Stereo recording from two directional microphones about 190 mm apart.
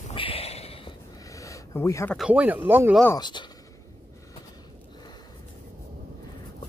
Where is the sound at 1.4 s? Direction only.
15° left (ahead or behind).